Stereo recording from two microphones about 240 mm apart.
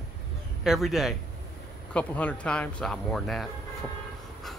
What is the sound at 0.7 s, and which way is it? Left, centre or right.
Speech, centre.